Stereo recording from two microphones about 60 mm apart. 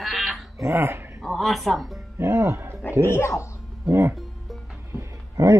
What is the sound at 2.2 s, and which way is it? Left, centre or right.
Speech, right.